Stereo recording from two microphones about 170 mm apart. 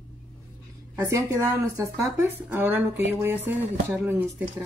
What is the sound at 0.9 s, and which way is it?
Speech, 15° right (ahead or behind).